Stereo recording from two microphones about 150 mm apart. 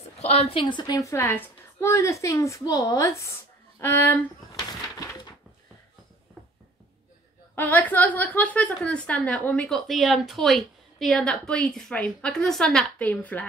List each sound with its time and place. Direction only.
0.2 s a woman's voice: 45° left (ahead or behind); by 4.2 s 15° left (ahead or behind)
4.6 s a sound: 25° left (ahead or behind)
7.5 s a woman's voice: 15° left (ahead or behind)